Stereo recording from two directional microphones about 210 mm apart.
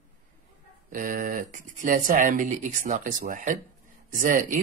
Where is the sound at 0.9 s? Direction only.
40° right (ahead or behind).